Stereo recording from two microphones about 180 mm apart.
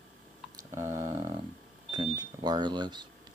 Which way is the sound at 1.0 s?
35° right (ahead or behind).